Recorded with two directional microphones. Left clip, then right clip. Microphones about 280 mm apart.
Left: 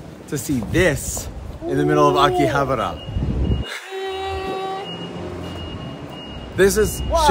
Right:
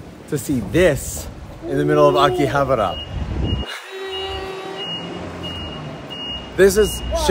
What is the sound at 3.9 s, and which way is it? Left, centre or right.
Music, centre.